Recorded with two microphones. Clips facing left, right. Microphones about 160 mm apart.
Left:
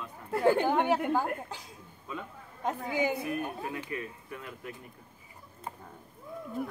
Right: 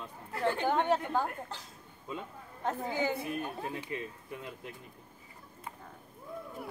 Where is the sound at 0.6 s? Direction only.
10° left (ahead or behind).